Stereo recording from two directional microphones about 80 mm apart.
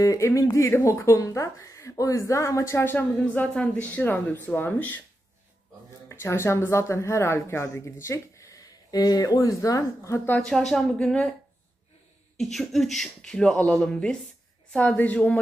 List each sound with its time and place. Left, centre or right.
0.0 s speech: left
3.2 s speech: centre
3.7 s speech: left
6.0 s speech: left
10.4 s speech: centre
12.4 s speech: centre